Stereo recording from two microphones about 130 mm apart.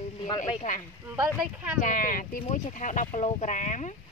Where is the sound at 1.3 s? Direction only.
5° right (ahead or behind).